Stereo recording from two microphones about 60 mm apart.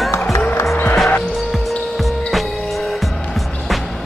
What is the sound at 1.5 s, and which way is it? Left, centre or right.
Music, centre.